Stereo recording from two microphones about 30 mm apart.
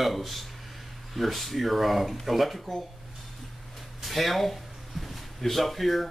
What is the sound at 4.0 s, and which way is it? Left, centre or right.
Speech, centre.